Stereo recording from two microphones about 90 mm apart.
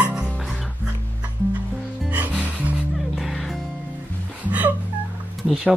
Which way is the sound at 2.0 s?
15° right (ahead or behind).